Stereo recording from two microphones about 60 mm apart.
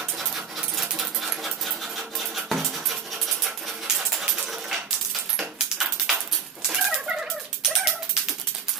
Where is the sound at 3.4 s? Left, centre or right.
Centre.